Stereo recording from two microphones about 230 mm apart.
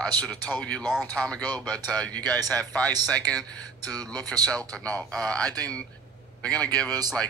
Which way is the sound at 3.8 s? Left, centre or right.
Centre.